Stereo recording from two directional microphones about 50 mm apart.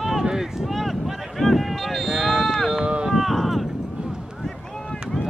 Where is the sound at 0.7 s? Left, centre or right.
Centre.